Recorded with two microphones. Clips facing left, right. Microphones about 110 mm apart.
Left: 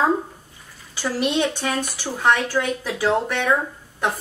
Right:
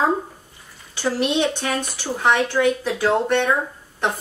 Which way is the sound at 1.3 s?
Centre (ahead or behind).